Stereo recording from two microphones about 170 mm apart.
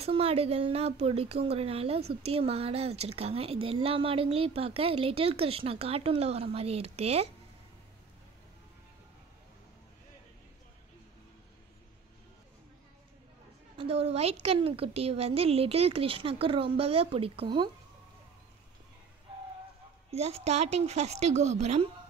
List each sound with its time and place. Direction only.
0.0 s speech: 35° right (ahead or behind)
13.7 s a woman's voice: 35° right (ahead or behind)
20.1 s speech: 35° right (ahead or behind)